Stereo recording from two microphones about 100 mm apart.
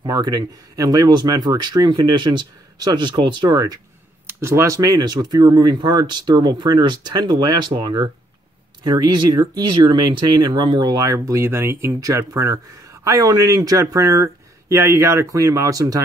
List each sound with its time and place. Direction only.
0.0 s speech: 40° right (ahead or behind)
4.3 s speech: 25° right (ahead or behind)
4.7 s speech: 40° right (ahead or behind)